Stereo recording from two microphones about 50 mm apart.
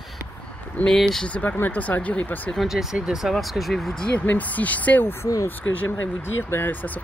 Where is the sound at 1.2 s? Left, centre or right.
Left.